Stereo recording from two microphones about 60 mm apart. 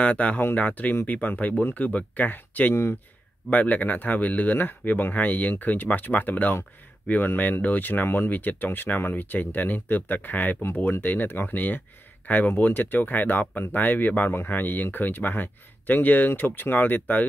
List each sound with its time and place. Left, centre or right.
0.0 s speech: left
2.7 s speech: left
3.4 s speech: left